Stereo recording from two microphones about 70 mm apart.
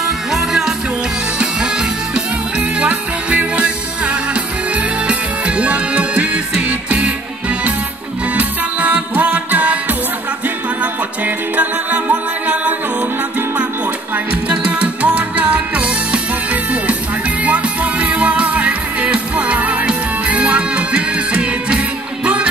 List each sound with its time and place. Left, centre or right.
0.0 s music: centre
14.1 s music: centre
17.4 s music: right